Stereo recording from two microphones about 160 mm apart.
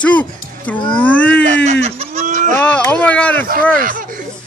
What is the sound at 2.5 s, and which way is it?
Speech, 10° left (ahead or behind).